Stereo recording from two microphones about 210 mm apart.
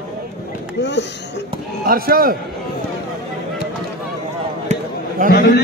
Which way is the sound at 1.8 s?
45° right (ahead or behind).